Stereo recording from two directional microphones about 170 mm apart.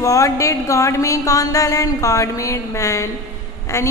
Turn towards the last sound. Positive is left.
turn(degrees=15)  # may be behind; listen again after turning